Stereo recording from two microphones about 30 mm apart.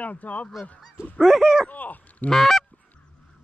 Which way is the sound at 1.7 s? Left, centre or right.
Left.